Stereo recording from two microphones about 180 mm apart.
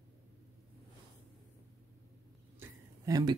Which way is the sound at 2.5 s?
20° right (ahead or behind).